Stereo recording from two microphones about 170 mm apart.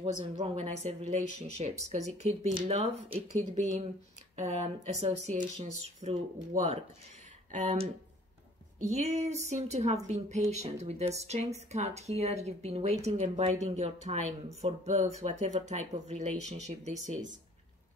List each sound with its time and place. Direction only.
0.2 s a woman's voice: 40° right (ahead or behind)